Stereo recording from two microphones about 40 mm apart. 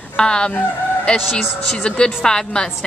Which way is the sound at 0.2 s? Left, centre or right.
Left.